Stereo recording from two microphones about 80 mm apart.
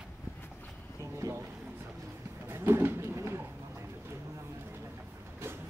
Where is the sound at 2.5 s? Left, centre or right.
Right.